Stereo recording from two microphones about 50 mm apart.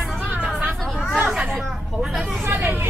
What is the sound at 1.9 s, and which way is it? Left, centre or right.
Speech, centre.